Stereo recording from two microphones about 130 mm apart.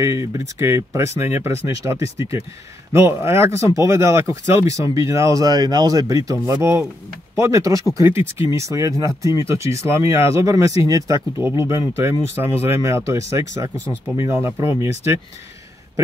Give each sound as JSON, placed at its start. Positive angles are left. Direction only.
{"t": 0.0, "sound": "speech", "side_deg": -25}